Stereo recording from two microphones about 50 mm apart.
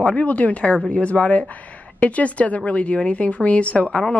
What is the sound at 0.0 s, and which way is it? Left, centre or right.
Speech, left.